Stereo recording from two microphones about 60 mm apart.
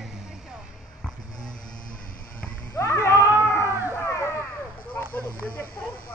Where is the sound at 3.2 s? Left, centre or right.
Right.